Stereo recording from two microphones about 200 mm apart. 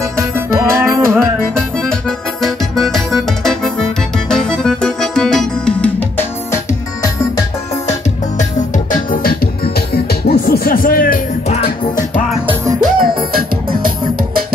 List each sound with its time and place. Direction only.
0.2 s music: 15° right (ahead or behind)
1.1 s accordion: 5° left (ahead or behind)
8.4 s music: 40° left (ahead or behind)
12.8 s music: 45° right (ahead or behind)